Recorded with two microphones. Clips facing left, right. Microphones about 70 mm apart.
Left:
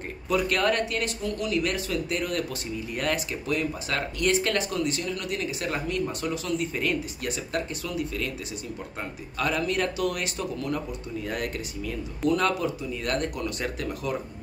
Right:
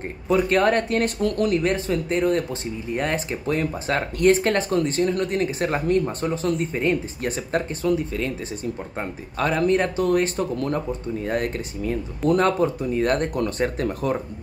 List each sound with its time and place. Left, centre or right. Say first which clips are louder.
0.3 s speech: right 6 dB; right
1.6 s speech: right 5 dB; right
9.4 s speech: right 6 dB; right